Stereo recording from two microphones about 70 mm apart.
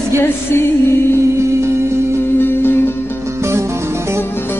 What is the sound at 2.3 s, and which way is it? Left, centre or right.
Music, left.